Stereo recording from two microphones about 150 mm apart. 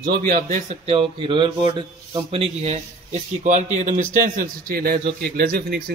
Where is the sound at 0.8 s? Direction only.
35° right (ahead or behind).